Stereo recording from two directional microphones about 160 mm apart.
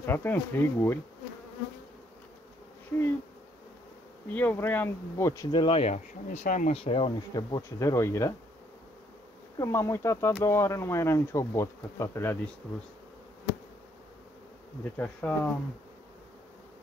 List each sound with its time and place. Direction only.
0.0 s speech: 15° left (ahead or behind)
4.3 s speech: 10° left (ahead or behind)
5.5 s speech: 35° left (ahead or behind)
7.2 s speech: 25° left (ahead or behind)
9.6 s speech: 15° left (ahead or behind)
15.0 s speech: 10° left (ahead or behind)